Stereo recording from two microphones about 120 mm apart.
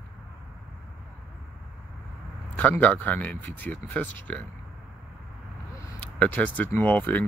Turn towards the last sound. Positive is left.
turn(degrees=15)  # may be behind; listen again after turning